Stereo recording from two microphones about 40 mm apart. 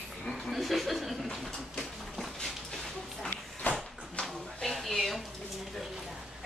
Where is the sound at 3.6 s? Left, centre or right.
Left.